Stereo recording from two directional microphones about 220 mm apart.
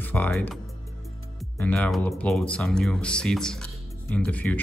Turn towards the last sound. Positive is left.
turn(degrees=5)  # may be behind; listen again after turning